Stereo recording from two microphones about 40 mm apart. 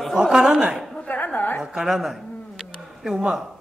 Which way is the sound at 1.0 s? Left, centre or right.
Left.